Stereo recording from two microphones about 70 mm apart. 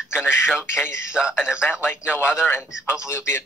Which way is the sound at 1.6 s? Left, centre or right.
Left.